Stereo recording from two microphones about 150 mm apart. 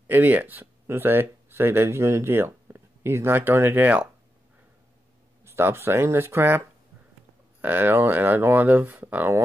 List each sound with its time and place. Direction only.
0.0 s speech: 10° right (ahead or behind)
5.4 s speech: 15° right (ahead or behind)
7.6 s speech: 15° right (ahead or behind)